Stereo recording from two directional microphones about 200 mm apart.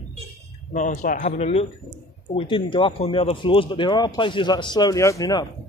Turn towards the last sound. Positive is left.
turn(degrees=15)  # may be behind; listen again after turning